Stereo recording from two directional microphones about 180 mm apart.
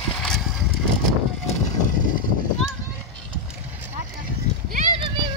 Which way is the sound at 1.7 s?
45° left (ahead or behind).